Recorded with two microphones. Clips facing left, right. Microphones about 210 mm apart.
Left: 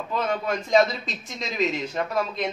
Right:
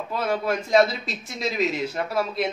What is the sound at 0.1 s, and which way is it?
A man's voice, 5° right (ahead or behind).